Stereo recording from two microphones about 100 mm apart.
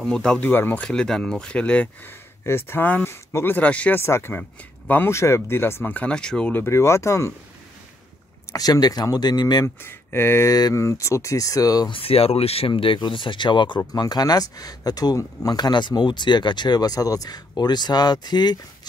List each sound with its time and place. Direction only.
0.0 s speech: 10° left (ahead or behind)
0.5 s speech: 20° left (ahead or behind)
0.8 s speech: 5° left (ahead or behind)
2.4 s speech: 25° left (ahead or behind)
4.0 s speech: 25° left (ahead or behind); by 6.5 s 10° left (ahead or behind)
6.5 s speech: 25° left (ahead or behind)
8.5 s speech: 40° left (ahead or behind)
9.8 s speech: 25° left (ahead or behind)
10.5 s speech: 35° left (ahead or behind)
11.9 s speech: 75° left (ahead or behind); by 18.6 s 45° left (ahead or behind)